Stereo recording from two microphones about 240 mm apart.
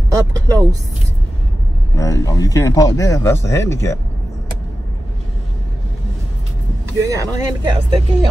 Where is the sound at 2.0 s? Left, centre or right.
Centre.